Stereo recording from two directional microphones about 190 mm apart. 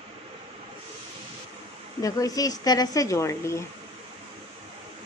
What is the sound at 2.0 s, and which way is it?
A woman's voice, 20° left (ahead or behind).